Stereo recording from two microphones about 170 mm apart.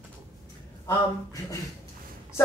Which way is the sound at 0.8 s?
20° left (ahead or behind).